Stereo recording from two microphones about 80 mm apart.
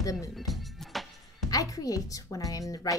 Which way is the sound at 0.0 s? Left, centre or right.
Left.